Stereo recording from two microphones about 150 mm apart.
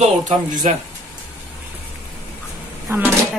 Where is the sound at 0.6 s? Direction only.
50° right (ahead or behind).